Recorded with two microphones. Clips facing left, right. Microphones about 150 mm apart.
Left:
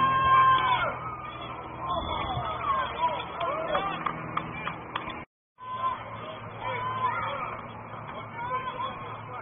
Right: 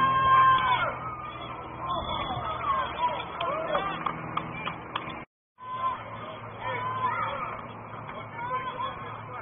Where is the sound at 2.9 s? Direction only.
Centre (ahead or behind).